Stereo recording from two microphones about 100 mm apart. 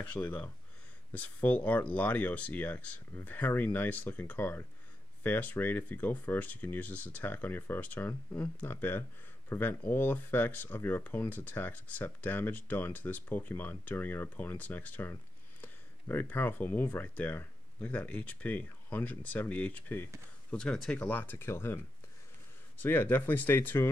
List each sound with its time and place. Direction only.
0.1 s speech: 20° left (ahead or behind)
20.5 s speech: 5° left (ahead or behind)